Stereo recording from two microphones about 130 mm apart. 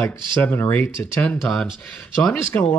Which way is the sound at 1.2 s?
5° left (ahead or behind).